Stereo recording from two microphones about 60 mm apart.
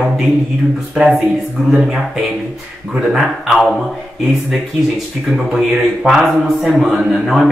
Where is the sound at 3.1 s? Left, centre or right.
Centre.